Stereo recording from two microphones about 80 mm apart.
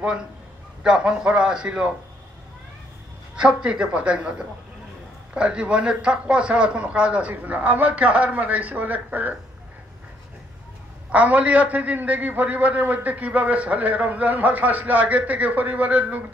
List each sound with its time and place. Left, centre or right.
0.8 s a man's voice: centre
3.3 s a man's voice: centre
11.1 s a man's voice: centre